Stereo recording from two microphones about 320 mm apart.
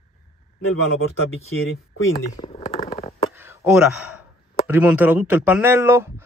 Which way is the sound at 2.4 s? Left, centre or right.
Centre.